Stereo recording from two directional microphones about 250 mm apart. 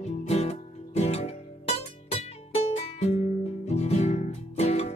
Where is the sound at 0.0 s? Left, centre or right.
Left.